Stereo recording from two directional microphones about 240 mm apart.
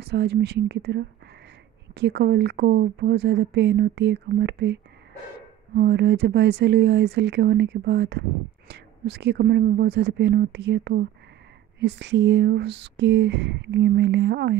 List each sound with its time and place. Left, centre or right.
0.0 s speech: right
5.8 s speech: right